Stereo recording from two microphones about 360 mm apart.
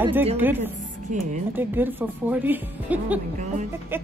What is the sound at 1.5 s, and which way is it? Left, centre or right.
Speech, centre.